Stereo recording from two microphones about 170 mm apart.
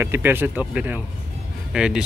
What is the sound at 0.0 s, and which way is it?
Speech, 10° right (ahead or behind).